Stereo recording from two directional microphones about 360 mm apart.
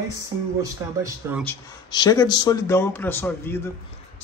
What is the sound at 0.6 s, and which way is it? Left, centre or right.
Speech, centre.